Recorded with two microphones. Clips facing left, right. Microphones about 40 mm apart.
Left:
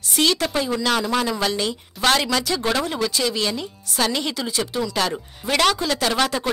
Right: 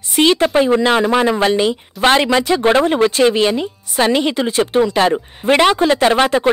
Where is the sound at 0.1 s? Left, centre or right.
Right.